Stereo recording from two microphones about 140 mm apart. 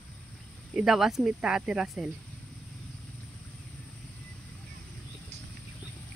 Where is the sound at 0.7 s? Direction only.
5° right (ahead or behind).